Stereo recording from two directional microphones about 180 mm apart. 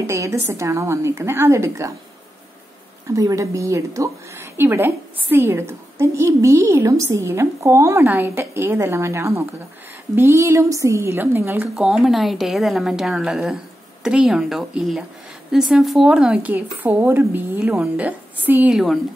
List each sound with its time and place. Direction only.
0.0 s a woman's voice: 15° right (ahead or behind)
3.1 s a woman's voice: 20° right (ahead or behind)